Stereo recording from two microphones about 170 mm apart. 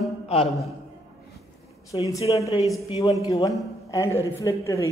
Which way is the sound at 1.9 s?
30° left (ahead or behind).